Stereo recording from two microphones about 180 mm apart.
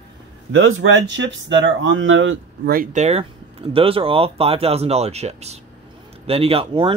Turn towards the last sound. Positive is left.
turn(degrees=-30)  # may be behind; listen again after turning